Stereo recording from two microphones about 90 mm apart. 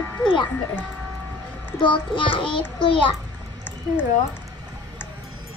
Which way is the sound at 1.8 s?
65° left (ahead or behind).